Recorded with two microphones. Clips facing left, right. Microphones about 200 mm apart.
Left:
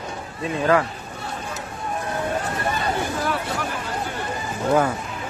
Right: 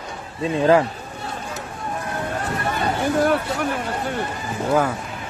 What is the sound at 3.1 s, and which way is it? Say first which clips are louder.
Hubbub: right 7 dB; 60° right (ahead or behind).